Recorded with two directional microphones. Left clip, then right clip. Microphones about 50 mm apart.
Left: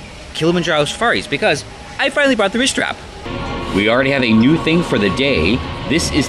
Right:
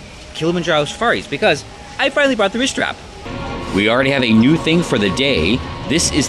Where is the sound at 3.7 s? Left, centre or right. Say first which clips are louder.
Even; right.